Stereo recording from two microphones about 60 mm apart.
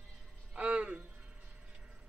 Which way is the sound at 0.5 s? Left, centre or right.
Right.